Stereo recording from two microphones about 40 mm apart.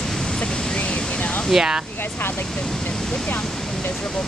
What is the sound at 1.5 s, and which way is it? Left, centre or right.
Speech, centre.